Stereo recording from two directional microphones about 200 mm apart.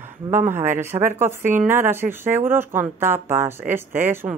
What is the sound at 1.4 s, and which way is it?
Speech, 40° right (ahead or behind).